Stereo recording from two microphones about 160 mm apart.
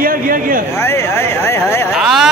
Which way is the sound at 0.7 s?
15° left (ahead or behind).